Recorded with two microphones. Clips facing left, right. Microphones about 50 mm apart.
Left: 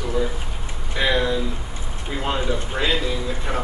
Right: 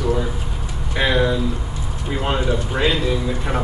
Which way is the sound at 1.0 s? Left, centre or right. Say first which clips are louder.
Right 2 dB; centre.